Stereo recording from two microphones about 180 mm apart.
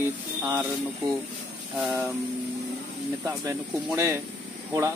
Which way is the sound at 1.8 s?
5° right (ahead or behind).